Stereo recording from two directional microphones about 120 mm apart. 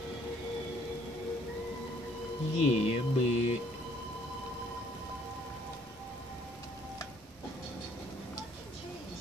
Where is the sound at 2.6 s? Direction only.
55° left (ahead or behind).